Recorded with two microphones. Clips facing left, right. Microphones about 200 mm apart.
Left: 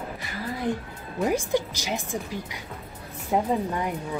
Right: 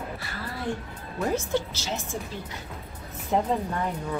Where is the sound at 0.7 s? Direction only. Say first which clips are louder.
Left 3 dB; 20° left (ahead or behind).